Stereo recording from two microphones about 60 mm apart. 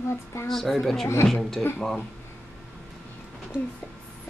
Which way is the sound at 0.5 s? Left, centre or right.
Centre.